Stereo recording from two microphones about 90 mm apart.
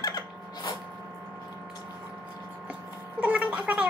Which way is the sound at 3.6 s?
15° right (ahead or behind).